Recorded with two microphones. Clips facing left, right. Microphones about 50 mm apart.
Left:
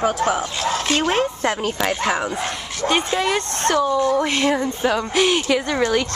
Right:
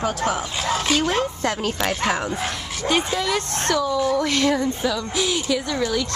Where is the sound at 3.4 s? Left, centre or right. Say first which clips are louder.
Left 3 dB; left.